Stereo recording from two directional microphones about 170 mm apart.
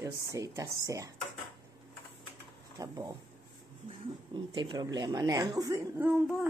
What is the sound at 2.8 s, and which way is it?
Speech, 20° right (ahead or behind).